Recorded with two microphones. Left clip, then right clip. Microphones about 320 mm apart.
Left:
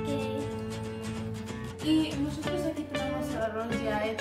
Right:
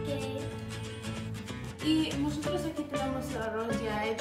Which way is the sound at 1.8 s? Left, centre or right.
Centre.